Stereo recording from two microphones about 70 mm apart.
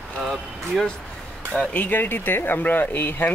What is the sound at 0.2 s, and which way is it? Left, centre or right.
Speech, centre.